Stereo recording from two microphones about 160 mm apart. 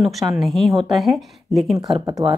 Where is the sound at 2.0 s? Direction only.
25° right (ahead or behind).